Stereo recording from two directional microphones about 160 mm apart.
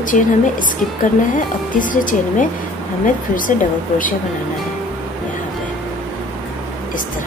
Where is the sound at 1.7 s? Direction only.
55° left (ahead or behind).